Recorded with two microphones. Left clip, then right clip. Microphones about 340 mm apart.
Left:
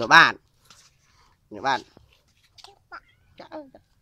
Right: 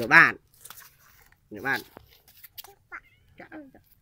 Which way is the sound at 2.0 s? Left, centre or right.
Right.